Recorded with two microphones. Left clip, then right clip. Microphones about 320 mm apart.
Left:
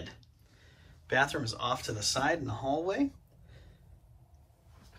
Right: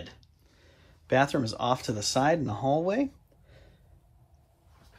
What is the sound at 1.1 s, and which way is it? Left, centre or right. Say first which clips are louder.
Speech: right 4 dB; centre.